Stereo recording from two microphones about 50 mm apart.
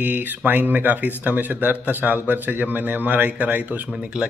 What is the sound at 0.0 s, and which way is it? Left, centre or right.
Speech, right.